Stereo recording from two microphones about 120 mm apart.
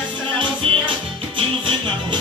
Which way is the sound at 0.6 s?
55° right (ahead or behind).